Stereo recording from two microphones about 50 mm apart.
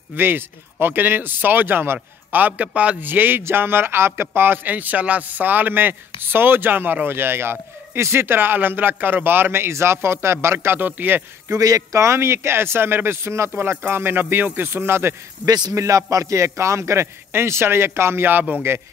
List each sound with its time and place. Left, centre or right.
0.1 s speech: right
3.0 s speech: right
4.6 s speech: right
7.1 s speech: right
10.8 s speech: right
11.5 s a man's voice: right
15.7 s a man's voice: right